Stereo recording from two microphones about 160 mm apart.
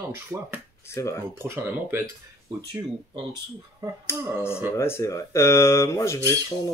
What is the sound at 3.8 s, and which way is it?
Speech, 20° right (ahead or behind).